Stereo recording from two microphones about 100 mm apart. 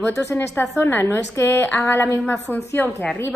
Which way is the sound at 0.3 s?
25° left (ahead or behind).